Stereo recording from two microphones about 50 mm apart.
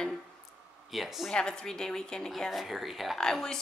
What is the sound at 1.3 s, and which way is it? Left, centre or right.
A woman's voice, centre.